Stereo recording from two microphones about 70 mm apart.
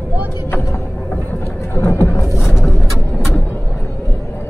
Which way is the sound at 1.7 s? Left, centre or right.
Left.